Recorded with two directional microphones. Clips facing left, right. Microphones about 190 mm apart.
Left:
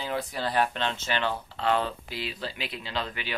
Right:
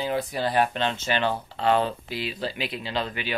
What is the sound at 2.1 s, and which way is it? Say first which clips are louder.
Speech: right 5 dB; 10° right (ahead or behind).